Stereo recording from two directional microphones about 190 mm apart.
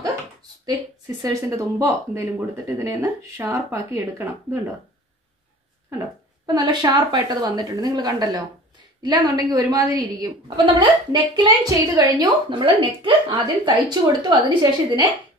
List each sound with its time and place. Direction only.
0.7 s speech: 20° right (ahead or behind)
5.9 s a woman's voice: 20° right (ahead or behind)